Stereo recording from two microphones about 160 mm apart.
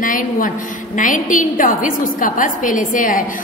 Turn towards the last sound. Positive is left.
turn(degrees=55)  # may be behind; listen again after turning